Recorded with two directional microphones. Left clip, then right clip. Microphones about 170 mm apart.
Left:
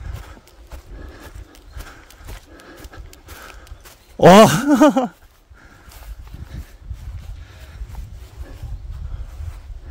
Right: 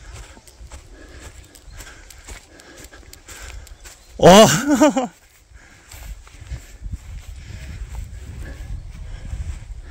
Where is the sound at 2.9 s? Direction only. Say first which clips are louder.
Left 2 dB; 30° left (ahead or behind).